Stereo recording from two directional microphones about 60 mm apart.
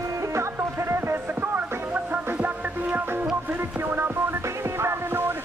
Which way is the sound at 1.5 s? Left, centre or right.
Right.